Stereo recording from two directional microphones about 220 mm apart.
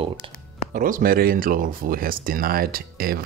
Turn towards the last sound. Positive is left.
turn(degrees=-40)  # may be behind; listen again after turning